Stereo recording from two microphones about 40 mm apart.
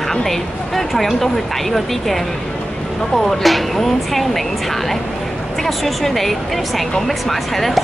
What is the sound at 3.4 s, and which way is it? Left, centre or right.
Speech, centre.